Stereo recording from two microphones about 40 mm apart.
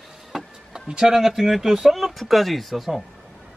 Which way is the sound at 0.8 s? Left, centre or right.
Centre.